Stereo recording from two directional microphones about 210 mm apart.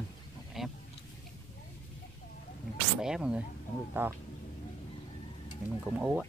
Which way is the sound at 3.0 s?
5° right (ahead or behind).